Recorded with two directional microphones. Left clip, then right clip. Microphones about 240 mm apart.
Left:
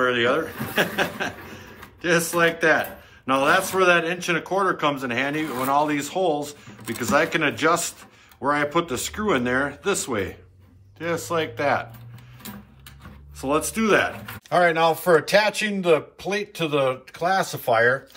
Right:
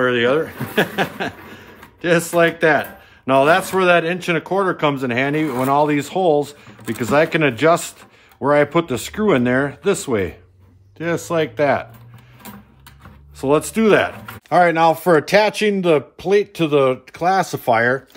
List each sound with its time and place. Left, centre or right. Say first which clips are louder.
0.0 s speech: right 4 dB; right
13.4 s speech: right 7 dB; right